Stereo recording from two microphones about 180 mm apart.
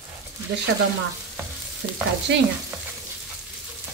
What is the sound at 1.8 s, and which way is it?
Stir, 90° right.